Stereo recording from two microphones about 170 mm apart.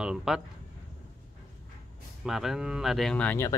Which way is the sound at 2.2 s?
Centre (ahead or behind).